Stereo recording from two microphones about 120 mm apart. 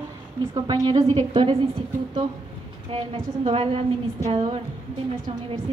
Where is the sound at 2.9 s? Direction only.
50° right (ahead or behind).